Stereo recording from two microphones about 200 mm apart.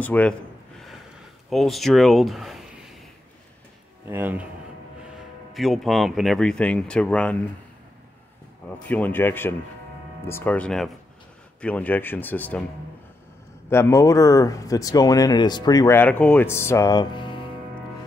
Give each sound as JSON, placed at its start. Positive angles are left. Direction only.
{"t": 0.0, "sound": "a sound", "side_deg": 10}
{"t": 1.5, "sound": "speech", "side_deg": 0}
{"t": 4.1, "sound": "a man's voice", "side_deg": -10}
{"t": 8.8, "sound": "speech", "side_deg": 10}
{"t": 13.7, "sound": "speech", "side_deg": 15}